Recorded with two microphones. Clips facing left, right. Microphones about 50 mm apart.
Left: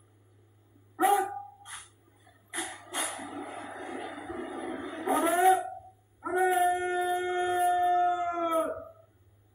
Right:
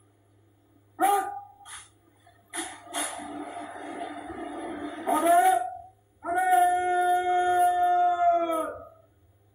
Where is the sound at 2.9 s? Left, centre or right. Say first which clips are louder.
Right 3 dB; left.